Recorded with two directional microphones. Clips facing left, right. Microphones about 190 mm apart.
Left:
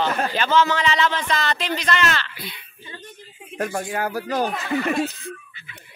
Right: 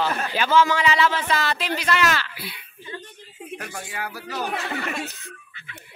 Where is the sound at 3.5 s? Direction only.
45° left (ahead or behind).